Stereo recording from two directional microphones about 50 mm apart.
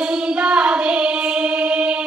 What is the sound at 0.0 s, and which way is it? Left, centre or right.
Child singing, centre.